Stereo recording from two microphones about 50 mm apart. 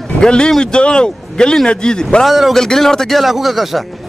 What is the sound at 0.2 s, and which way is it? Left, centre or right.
A man's voice, centre.